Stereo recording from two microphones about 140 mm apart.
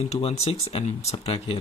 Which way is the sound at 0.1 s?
50° left (ahead or behind).